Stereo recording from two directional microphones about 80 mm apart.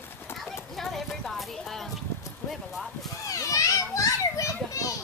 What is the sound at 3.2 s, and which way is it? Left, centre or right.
Children playing, left.